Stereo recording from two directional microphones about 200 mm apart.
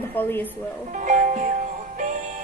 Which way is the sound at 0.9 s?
40° right (ahead or behind).